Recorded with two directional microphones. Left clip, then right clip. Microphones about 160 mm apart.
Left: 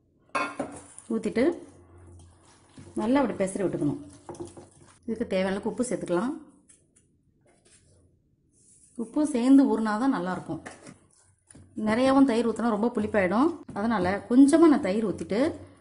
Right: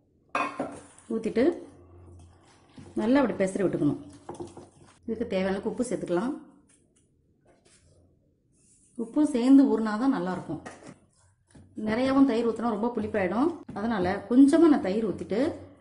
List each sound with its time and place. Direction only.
1.1 s a woman's voice: 20° left (ahead or behind)
3.0 s speech: 10° left (ahead or behind)
5.0 s a woman's voice: 30° left (ahead or behind)
8.9 s a woman's voice: 20° left (ahead or behind)
11.8 s speech: 40° left (ahead or behind)